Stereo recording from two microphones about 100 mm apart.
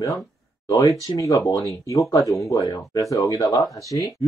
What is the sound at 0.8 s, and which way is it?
Speech, 35° left (ahead or behind).